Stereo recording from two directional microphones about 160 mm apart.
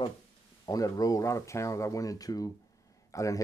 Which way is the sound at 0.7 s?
20° left (ahead or behind).